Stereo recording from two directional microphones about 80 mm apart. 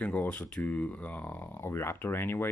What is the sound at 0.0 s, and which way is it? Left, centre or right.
Speech, centre.